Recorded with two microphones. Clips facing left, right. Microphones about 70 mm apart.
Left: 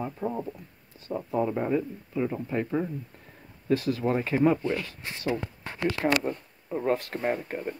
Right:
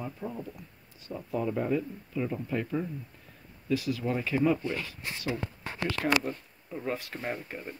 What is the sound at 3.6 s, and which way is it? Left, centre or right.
Speech, left.